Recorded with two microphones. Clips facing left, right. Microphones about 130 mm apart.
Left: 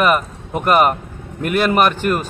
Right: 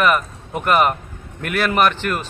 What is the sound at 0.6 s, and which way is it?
Speech, 40° left (ahead or behind).